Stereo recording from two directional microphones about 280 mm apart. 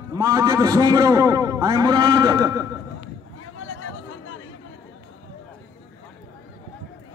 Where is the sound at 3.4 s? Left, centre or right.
Left.